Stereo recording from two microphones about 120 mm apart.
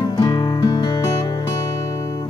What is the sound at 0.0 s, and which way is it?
Music, 35° left (ahead or behind).